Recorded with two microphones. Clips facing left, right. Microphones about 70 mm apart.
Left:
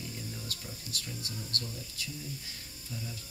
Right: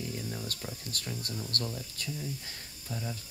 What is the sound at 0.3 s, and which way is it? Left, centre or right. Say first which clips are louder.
Speech: right 4 dB; right.